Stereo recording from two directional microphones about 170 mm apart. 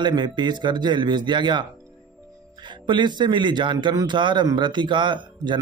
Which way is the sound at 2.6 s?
25° right (ahead or behind).